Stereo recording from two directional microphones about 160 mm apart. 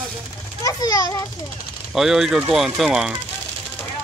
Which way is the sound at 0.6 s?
20° left (ahead or behind).